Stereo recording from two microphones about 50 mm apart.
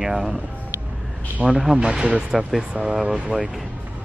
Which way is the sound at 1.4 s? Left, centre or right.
Centre.